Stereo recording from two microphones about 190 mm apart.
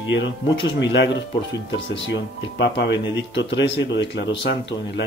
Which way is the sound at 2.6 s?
65° left (ahead or behind).